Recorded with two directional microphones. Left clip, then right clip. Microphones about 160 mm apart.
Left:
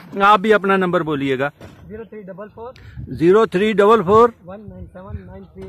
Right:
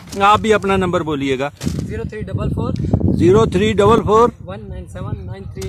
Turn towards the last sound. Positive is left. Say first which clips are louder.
# right 5 dB
turn(degrees=-35)  # may be behind; listen again after turning